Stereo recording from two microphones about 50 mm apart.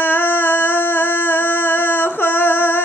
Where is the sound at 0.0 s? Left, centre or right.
Left.